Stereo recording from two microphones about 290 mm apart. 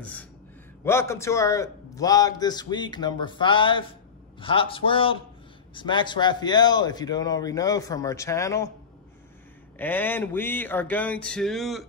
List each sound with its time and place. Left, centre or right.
0.0 s a man's voice: centre
9.8 s a man's voice: centre